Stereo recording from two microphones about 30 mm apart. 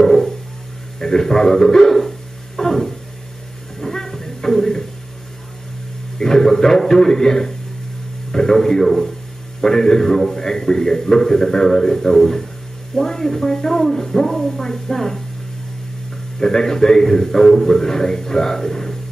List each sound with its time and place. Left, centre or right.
0.0 s a sound: centre
0.9 s speech: centre
2.0 s a sound: centre
3.8 s music: centre
6.1 s a man's voice: centre
8.8 s speech: centre
16.3 s speech: centre